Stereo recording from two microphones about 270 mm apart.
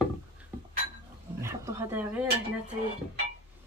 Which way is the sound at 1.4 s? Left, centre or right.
Centre.